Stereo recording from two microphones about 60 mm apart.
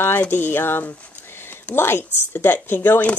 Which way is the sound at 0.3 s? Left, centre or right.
Left.